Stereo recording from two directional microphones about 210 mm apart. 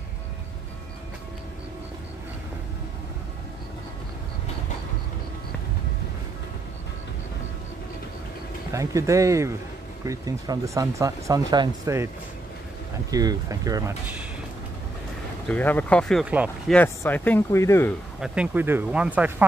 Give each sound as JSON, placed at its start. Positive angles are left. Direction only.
{"t": 8.7, "sound": "speech", "side_deg": -15}
{"t": 13.1, "sound": "speech", "side_deg": -15}
{"t": 15.4, "sound": "speech", "side_deg": 10}
{"t": 16.7, "sound": "speech", "side_deg": 10}
{"t": 18.2, "sound": "speech", "side_deg": -5}